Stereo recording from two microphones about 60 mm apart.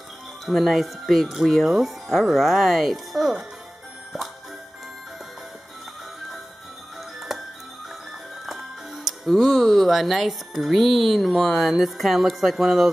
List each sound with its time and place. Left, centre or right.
0.5 s speech: centre
7.2 s music: centre
8.9 s speech: centre